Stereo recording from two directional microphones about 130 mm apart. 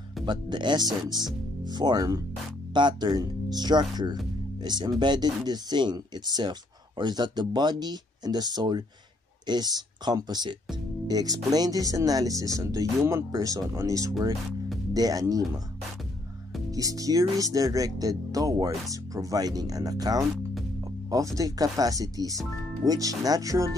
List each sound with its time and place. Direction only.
0.2 s speech: 35° right (ahead or behind)
16.7 s speech: 25° right (ahead or behind)